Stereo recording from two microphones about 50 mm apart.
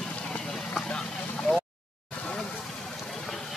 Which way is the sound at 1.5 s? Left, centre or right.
Left.